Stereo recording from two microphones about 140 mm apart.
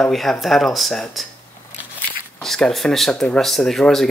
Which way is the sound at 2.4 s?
5° left (ahead or behind).